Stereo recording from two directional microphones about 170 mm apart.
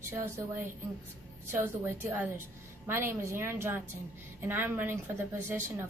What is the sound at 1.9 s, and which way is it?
A woman's voice, 10° right (ahead or behind).